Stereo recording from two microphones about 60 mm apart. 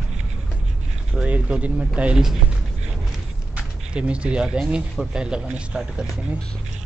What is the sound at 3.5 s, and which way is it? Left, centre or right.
Speech, centre.